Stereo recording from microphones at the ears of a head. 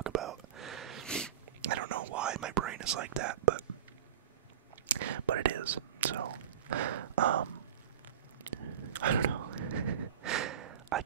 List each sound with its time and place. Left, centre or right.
0.0 s whispering: right
4.8 s whispering: right